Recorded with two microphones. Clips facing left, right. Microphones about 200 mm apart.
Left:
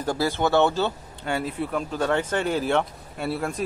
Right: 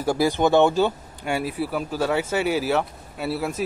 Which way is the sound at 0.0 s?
10° right (ahead or behind).